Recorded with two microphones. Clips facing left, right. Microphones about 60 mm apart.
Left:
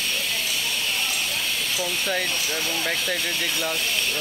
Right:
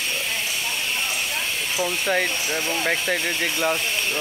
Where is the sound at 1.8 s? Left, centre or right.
Right.